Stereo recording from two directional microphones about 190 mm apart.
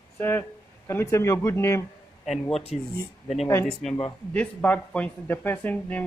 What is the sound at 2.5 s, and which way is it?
Speech, 30° left (ahead or behind).